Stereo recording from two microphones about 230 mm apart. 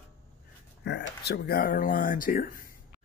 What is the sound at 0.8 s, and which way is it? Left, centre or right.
Speech, left.